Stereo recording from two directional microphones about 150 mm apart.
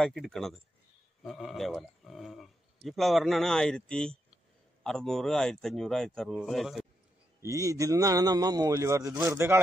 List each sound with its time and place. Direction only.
0.0 s speech: centre (ahead or behind)
7.4 s a man's voice: 20° right (ahead or behind)